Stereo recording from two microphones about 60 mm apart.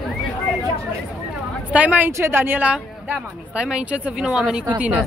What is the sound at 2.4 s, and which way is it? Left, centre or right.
Speech, right.